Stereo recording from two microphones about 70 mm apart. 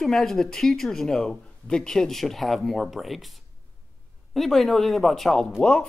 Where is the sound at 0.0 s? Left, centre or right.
Centre.